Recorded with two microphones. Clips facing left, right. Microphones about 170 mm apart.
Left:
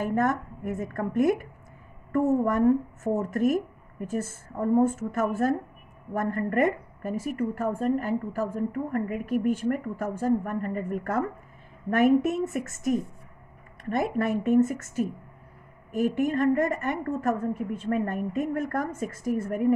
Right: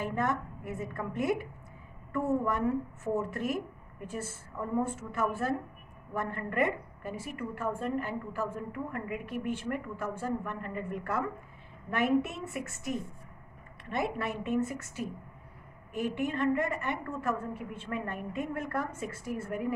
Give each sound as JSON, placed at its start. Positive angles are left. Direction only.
{"t": 0.0, "sound": "a woman's voice", "side_deg": 45}